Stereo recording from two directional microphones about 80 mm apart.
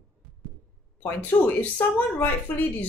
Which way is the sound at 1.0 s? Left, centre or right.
Left.